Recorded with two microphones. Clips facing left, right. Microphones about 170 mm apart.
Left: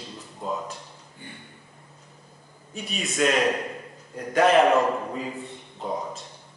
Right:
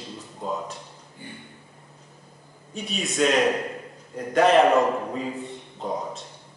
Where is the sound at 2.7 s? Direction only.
Centre (ahead or behind).